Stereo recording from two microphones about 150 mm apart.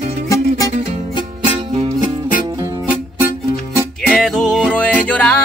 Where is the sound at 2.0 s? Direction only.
65° left (ahead or behind).